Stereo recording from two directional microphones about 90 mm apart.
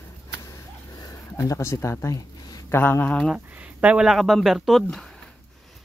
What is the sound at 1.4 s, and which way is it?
Speech, 35° left (ahead or behind).